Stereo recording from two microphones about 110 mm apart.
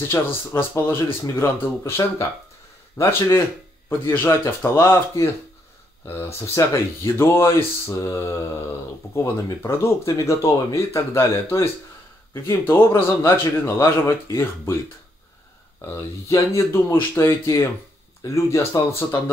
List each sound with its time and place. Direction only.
0.5 s speech: 20° left (ahead or behind)
16.0 s speech: 25° left (ahead or behind)